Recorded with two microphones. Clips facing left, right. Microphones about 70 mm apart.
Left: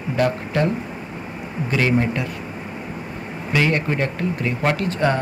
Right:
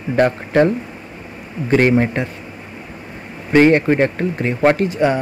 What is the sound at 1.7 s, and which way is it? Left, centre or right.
Speech, right.